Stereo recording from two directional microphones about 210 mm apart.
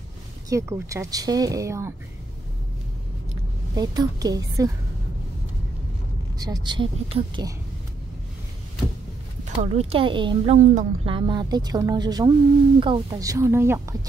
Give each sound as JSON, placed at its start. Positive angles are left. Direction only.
{"t": 0.5, "sound": "speech", "side_deg": -15}
{"t": 3.7, "sound": "speech", "side_deg": -20}
{"t": 6.3, "sound": "speech", "side_deg": -20}
{"t": 9.4, "sound": "speech", "side_deg": -30}
{"t": 11.1, "sound": "speech", "side_deg": -20}